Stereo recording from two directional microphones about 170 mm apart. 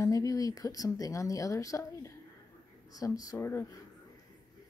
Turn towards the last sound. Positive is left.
turn(degrees=15)  # may be behind; listen again after turning